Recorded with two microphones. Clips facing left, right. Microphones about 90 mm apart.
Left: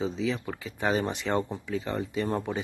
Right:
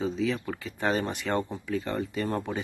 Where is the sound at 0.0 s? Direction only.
20° left (ahead or behind).